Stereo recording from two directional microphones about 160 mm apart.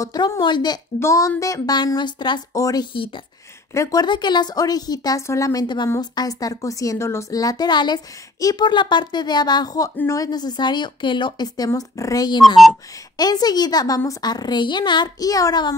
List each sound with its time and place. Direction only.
0.0 s a woman's voice: 25° left (ahead or behind)